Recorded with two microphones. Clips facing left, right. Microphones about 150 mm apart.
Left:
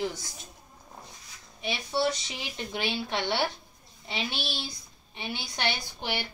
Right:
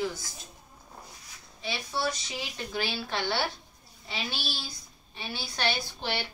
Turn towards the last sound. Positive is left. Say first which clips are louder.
# right 1 dB
turn(degrees=15)  # may be behind; listen again after turning